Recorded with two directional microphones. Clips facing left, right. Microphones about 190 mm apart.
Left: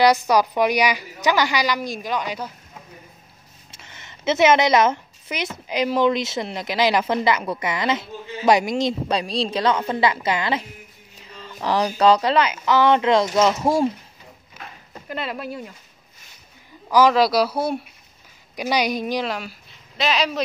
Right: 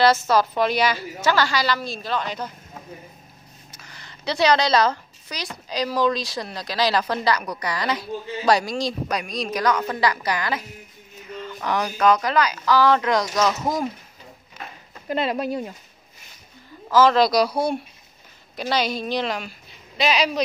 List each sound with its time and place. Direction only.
0.0 s a woman's voice: 15° left (ahead or behind)
3.7 s a sound: 25° left (ahead or behind)
5.7 s speech: 20° left (ahead or behind)
15.0 s speech: 20° right (ahead or behind)
16.9 s speech: 10° left (ahead or behind)
18.6 s a woman's voice: 15° left (ahead or behind); by 20.4 s centre (ahead or behind)